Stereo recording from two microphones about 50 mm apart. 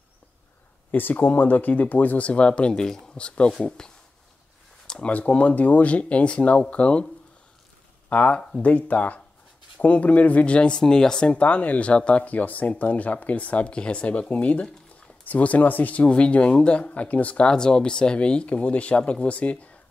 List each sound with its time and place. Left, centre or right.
0.9 s speech: left; by 3.9 s centre
4.8 s a sound: centre
5.1 s speech: left
8.1 s speech: left
8.4 s speech: centre
8.6 s speech: left; by 11.3 s centre
11.3 s speech: left
17.5 s speech: centre